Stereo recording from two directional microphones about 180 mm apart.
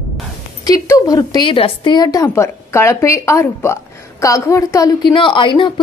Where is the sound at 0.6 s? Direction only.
20° left (ahead or behind).